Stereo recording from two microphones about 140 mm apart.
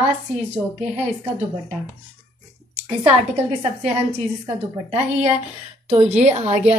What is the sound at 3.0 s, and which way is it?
Speech, 45° right (ahead or behind).